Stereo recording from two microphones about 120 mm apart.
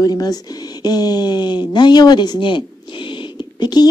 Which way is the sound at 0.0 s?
35° left (ahead or behind).